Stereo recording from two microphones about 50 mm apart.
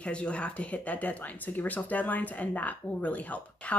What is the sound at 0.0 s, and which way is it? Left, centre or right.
Speech, left.